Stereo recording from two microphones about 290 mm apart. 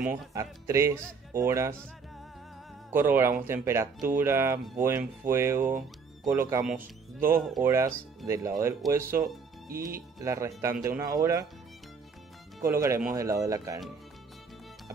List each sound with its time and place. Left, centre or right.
0.0 s speech: centre
2.9 s speech: centre
12.5 s speech: centre